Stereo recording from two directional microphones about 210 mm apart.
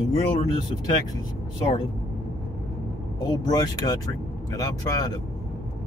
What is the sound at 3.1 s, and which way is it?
Speech, 20° left (ahead or behind).